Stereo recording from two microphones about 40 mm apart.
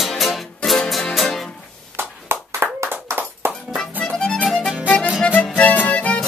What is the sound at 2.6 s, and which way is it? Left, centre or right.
Clapping, right.